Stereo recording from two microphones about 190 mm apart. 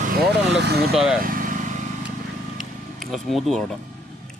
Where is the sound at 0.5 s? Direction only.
60° right (ahead or behind).